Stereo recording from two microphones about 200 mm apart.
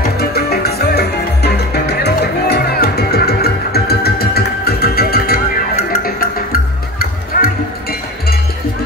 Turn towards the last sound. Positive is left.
turn(degrees=50)  # may be behind; listen again after turning